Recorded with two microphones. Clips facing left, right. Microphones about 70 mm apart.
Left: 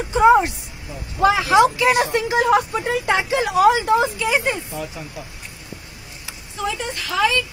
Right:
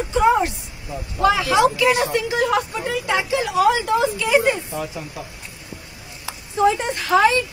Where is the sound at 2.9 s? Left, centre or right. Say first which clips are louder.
Left 2 dB; left.